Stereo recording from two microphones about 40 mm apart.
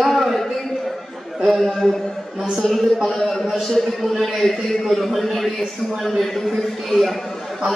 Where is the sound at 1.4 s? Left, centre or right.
Centre.